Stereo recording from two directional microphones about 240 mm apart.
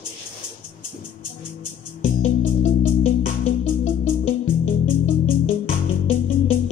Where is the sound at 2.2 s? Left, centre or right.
Left.